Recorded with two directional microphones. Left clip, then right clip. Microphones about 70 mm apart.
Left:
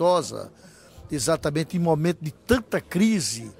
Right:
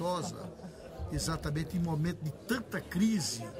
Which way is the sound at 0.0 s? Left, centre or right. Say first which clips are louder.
Left 14 dB; left.